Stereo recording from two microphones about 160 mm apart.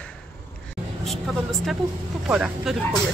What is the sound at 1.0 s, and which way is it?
Speech, centre (ahead or behind).